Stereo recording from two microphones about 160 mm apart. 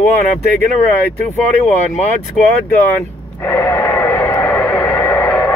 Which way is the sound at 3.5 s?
15° left (ahead or behind).